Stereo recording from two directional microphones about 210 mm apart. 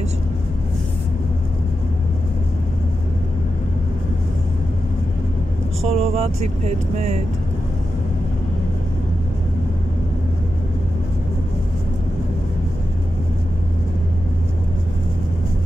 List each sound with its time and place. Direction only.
5.9 s speech: 30° right (ahead or behind)